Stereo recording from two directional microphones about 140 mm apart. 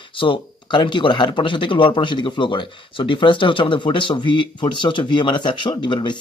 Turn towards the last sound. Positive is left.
turn(degrees=35)  # may be behind; listen again after turning